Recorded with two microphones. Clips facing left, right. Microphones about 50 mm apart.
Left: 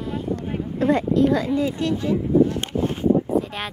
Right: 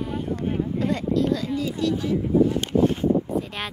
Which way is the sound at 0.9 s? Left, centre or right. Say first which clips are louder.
Left 5 dB; left.